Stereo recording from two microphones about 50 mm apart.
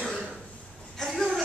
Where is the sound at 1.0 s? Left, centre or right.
Centre.